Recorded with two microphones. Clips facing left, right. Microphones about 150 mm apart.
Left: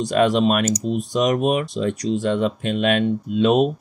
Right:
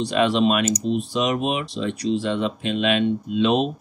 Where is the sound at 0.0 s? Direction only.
45° left (ahead or behind).